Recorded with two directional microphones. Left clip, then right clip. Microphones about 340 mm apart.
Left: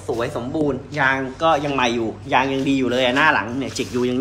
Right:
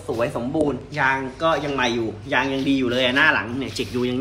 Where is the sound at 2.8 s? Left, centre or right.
Centre.